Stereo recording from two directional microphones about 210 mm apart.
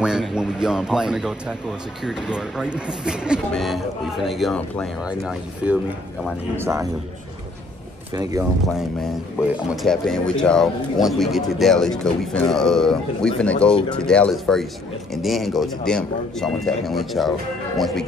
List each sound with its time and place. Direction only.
0.0 s speech: 5° right (ahead or behind)
6.6 s speech: 15° right (ahead or behind)
8.1 s speech: 15° right (ahead or behind)
9.4 s speech: centre (ahead or behind)